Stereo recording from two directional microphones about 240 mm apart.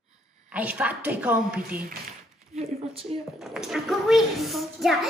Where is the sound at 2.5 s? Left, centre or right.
Right.